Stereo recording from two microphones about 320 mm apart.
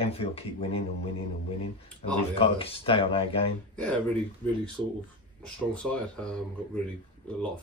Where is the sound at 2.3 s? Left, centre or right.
Centre.